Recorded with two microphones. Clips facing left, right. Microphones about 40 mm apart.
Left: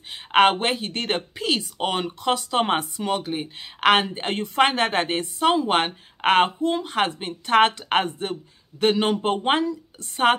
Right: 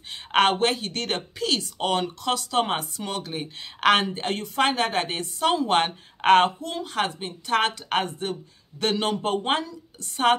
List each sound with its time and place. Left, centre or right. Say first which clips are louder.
0.1 s a woman's voice: left 3 dB; centre
6.6 s a woman's voice: left 5 dB; left